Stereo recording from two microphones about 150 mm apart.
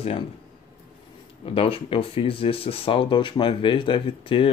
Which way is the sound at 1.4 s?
40° left (ahead or behind).